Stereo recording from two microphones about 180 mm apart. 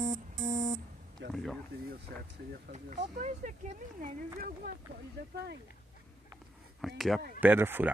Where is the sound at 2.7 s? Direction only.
40° right (ahead or behind).